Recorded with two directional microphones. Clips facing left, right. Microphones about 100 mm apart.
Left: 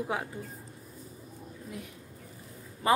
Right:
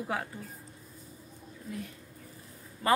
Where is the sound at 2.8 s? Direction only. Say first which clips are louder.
Left 1 dB; 15° left (ahead or behind).